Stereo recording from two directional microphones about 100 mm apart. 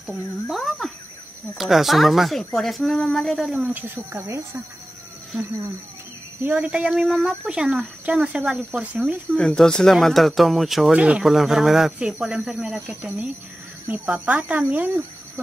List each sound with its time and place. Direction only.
0.0 s speech: centre (ahead or behind)
3.5 s speech: 15° right (ahead or behind)
6.4 s speech: 15° right (ahead or behind)
9.3 s speech: 5° left (ahead or behind); by 14.6 s 15° right (ahead or behind)